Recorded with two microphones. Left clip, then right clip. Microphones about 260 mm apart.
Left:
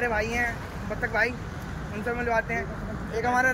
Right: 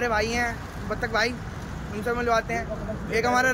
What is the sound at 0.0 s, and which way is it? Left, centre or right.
Speech, centre.